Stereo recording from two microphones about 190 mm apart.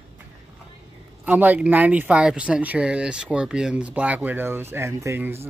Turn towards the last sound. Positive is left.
turn(degrees=-10)  # may be behind; listen again after turning